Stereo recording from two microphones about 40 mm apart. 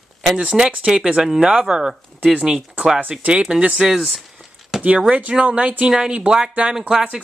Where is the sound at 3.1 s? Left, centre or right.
Centre.